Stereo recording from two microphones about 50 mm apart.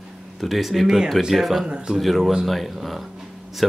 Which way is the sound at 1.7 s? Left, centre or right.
Centre.